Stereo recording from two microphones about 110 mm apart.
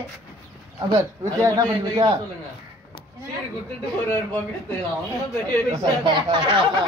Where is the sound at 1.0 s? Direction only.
35° right (ahead or behind).